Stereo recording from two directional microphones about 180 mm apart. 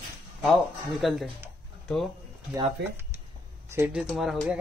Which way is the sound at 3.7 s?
15° right (ahead or behind).